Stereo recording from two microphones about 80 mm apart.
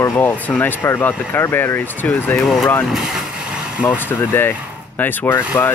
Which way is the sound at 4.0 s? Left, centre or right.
Left.